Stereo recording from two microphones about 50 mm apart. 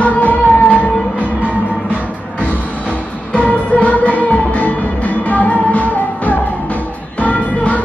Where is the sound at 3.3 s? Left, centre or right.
Left.